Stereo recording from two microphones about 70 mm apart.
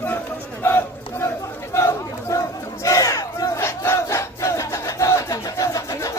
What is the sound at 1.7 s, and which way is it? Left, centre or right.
Crowd, left.